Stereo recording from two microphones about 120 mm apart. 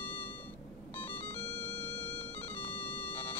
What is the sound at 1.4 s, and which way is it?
Music, 55° left (ahead or behind).